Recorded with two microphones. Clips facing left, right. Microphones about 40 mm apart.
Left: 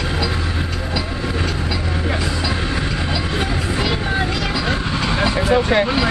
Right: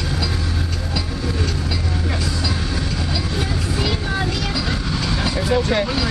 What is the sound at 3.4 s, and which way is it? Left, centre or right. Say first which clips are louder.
Vehicle: left 2 dB; left.